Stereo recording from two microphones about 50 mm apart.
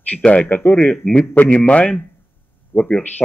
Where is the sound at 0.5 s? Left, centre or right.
Left.